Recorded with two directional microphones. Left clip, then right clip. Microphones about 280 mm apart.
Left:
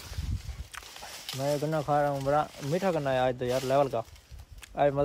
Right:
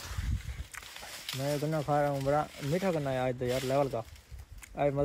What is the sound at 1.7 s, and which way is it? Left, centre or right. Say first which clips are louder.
Speech: left 1 dB; centre.